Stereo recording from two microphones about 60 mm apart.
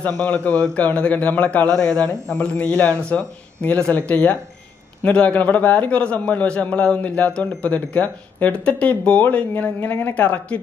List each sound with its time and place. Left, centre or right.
0.0 s a man's voice: left
1.7 s a man's voice: centre